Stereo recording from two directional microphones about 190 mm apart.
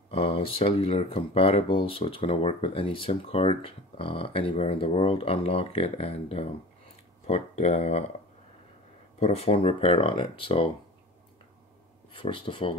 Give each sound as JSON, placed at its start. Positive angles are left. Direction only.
{"t": 0.1, "sound": "speech", "side_deg": 30}
{"t": 9.2, "sound": "speech", "side_deg": 30}
{"t": 12.1, "sound": "speech", "side_deg": 25}